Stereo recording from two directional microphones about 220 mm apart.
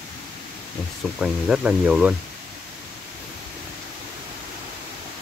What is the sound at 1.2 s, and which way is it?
Speech, 5° right (ahead or behind).